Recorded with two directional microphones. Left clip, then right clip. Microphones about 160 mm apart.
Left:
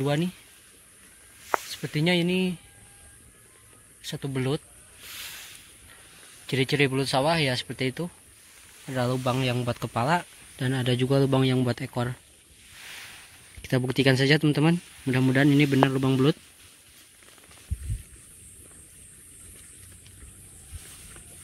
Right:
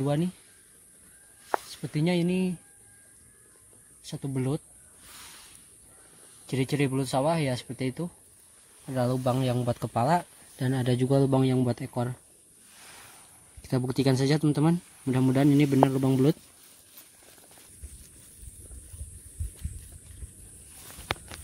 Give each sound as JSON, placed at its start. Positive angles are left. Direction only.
{"t": 0.0, "sound": "speech", "side_deg": -15}
{"t": 1.7, "sound": "speech", "side_deg": -5}
{"t": 4.0, "sound": "speech", "side_deg": -5}
{"t": 6.4, "sound": "speech", "side_deg": -5}
{"t": 13.6, "sound": "speech", "side_deg": -10}